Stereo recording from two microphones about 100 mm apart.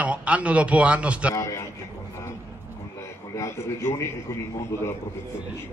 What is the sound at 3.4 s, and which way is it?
A man's voice, 25° left (ahead or behind).